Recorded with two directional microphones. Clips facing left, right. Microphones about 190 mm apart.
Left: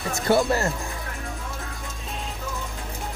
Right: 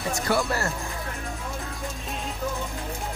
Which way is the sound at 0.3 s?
20° left (ahead or behind).